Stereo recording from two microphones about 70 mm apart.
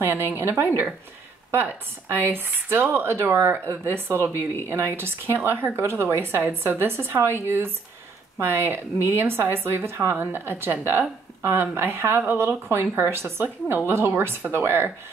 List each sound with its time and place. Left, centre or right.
0.0 s speech: right